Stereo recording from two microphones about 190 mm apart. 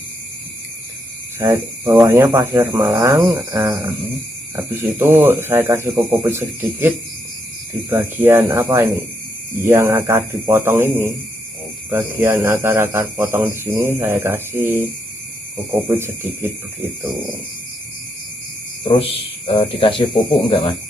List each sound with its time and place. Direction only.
1.4 s a man's voice: 15° right (ahead or behind)
7.9 s a man's voice: 10° right (ahead or behind)
18.9 s speech: 30° left (ahead or behind)